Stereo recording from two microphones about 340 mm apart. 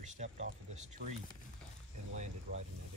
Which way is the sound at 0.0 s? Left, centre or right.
Centre.